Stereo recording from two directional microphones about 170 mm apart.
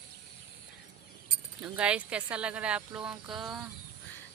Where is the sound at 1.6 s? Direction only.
5° right (ahead or behind).